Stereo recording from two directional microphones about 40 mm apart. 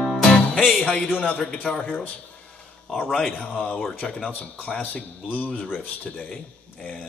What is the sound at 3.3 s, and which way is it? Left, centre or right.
Speech, left.